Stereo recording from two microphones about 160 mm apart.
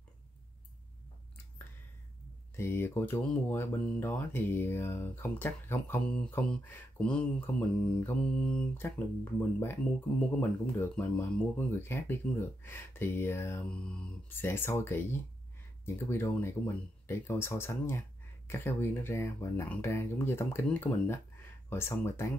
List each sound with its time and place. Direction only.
2.5 s speech: 15° left (ahead or behind)